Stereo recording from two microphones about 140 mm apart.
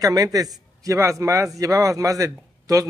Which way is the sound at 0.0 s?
25° right (ahead or behind).